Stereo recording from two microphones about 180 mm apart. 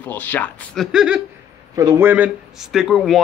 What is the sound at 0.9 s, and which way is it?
Speech, 5° right (ahead or behind).